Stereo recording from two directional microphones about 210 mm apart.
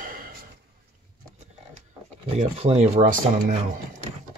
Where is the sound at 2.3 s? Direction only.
30° right (ahead or behind).